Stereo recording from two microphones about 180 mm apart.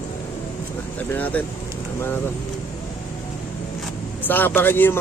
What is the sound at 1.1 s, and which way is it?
Speech, 10° left (ahead or behind).